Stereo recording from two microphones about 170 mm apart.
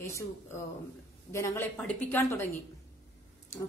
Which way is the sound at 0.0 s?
15° left (ahead or behind).